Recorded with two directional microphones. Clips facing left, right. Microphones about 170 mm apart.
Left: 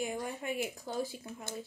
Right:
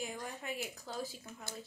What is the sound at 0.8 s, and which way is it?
Speech, 20° left (ahead or behind).